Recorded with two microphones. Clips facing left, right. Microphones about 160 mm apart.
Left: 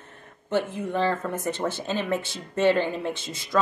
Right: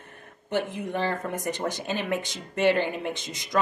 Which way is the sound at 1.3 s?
15° right (ahead or behind).